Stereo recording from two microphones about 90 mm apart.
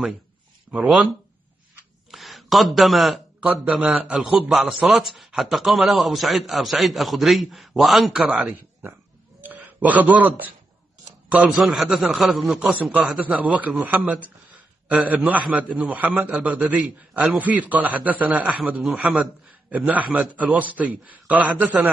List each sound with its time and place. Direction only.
0.7 s a man's voice: 5° right (ahead or behind)
2.0 s a man's voice: centre (ahead or behind)
9.4 s a sound: 20° right (ahead or behind)
11.3 s a man's voice: centre (ahead or behind)
19.7 s a man's voice: 15° right (ahead or behind)